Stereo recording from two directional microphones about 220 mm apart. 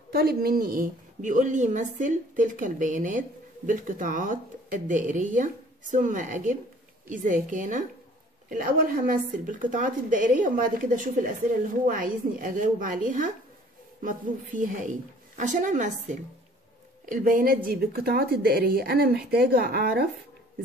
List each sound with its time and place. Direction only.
0.1 s a woman's voice: 45° right (ahead or behind)